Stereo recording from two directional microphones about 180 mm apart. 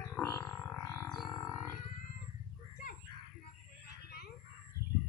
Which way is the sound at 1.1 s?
Centre (ahead or behind).